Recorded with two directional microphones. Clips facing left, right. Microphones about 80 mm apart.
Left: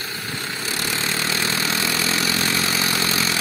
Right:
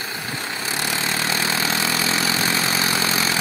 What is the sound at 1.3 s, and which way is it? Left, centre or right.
Vehicle, right.